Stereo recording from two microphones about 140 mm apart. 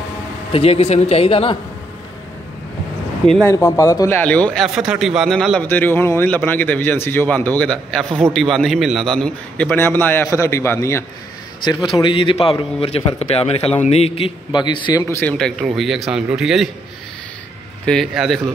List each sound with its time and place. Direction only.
0.5 s speech: 45° left (ahead or behind)
3.4 s speech: 20° left (ahead or behind)
4.2 s a man's voice: 10° left (ahead or behind)
4.6 s speech: 5° right (ahead or behind)
5.6 s a man's voice: 10° left (ahead or behind)
9.2 s a man's voice: 10° left (ahead or behind)
11.8 s a man's voice: 40° left (ahead or behind)
15.1 s a man's voice: 5° left (ahead or behind)
17.8 s speech: centre (ahead or behind)